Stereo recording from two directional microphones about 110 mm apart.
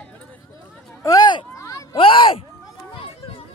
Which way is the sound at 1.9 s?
50° left (ahead or behind).